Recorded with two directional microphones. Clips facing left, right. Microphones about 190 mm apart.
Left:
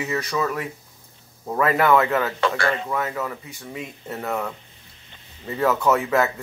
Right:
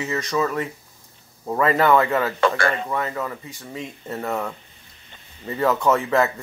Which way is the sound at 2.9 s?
Centre (ahead or behind).